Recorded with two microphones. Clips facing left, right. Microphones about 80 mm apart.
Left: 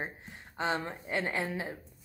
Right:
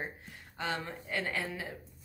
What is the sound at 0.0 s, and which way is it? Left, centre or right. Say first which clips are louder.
A woman's voice: left 2 dB; left.